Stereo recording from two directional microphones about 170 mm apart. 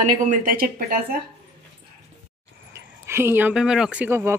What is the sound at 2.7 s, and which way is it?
Speech, 15° right (ahead or behind).